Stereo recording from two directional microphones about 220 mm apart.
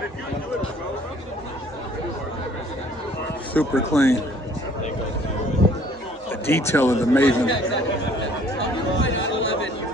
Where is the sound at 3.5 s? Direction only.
10° left (ahead or behind).